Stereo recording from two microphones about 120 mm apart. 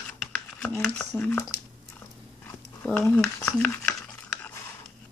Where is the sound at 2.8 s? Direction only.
10° left (ahead or behind).